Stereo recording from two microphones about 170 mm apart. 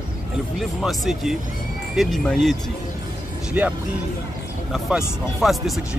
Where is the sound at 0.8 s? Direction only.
Centre (ahead or behind).